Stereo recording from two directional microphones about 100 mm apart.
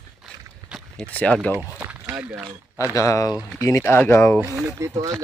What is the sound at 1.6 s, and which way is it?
Speech, 15° right (ahead or behind).